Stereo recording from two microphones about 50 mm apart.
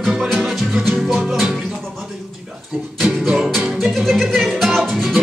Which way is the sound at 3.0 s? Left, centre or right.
Centre.